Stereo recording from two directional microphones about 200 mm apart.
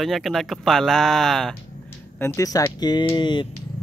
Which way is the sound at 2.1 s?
15° left (ahead or behind).